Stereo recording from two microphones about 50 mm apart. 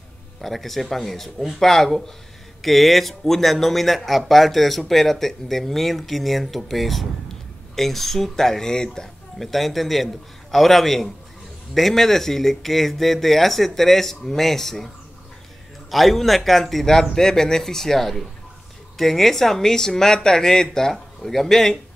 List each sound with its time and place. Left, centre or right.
0.4 s speech: centre
9.4 s speech: centre
15.9 s speech: centre